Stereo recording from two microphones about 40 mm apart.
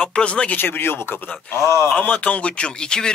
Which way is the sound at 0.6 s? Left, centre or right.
Left.